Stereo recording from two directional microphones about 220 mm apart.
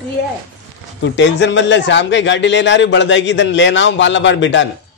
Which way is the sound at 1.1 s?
55° left (ahead or behind).